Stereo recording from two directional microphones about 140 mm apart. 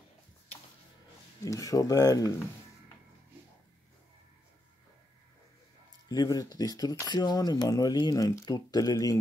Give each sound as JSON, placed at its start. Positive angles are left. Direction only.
{"t": 1.4, "sound": "speech", "side_deg": 25}
{"t": 6.0, "sound": "speech", "side_deg": 25}